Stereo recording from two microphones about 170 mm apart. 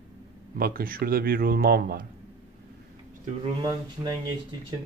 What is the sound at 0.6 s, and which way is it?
Speech, 60° right (ahead or behind).